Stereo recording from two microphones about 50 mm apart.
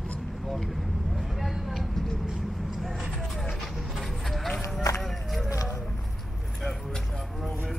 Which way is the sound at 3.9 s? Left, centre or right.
Centre.